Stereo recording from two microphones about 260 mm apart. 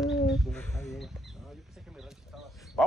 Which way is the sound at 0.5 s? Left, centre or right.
Centre.